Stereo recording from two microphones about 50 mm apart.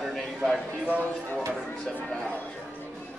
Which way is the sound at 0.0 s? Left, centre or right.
Centre.